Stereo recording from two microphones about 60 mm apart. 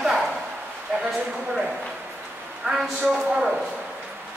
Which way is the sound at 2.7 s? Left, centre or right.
Centre.